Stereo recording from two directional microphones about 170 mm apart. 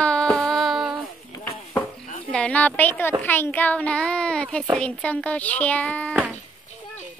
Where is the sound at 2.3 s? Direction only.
5° left (ahead or behind).